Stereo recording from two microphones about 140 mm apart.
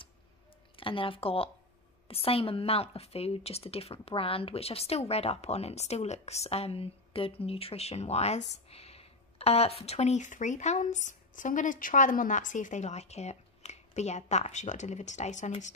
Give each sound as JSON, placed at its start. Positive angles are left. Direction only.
{"t": 0.7, "sound": "a woman's voice", "side_deg": 40}